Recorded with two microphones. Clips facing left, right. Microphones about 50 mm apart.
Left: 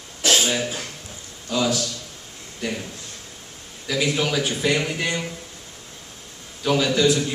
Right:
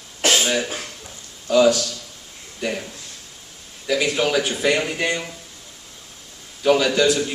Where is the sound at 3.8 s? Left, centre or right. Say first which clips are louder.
Right 3 dB; centre.